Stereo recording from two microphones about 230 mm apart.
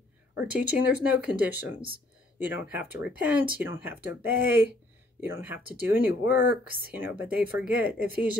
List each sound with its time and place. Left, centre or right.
0.5 s speech: centre
6.3 s speech: left
6.9 s speech: centre